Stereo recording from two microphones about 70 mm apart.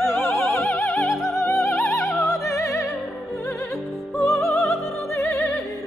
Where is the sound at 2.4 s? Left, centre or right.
Left.